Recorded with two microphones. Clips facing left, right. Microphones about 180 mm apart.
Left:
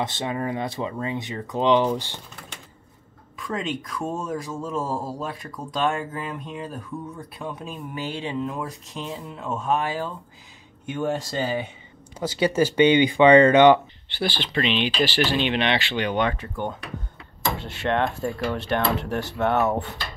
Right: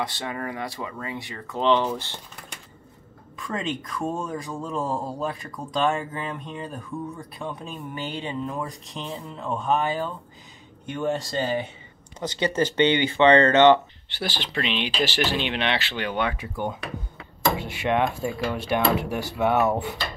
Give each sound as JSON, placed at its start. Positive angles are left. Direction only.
{"t": 0.0, "sound": "speech", "side_deg": 20}
{"t": 3.3, "sound": "a man's voice", "side_deg": 0}
{"t": 14.2, "sound": "speech", "side_deg": -10}